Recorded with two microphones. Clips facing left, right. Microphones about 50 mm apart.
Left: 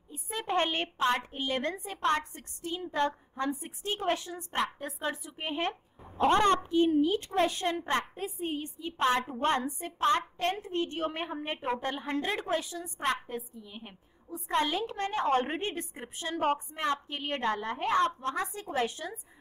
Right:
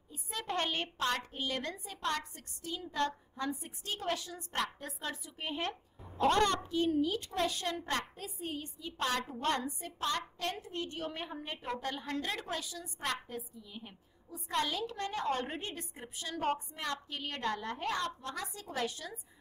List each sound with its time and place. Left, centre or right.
0.1 s a woman's voice: left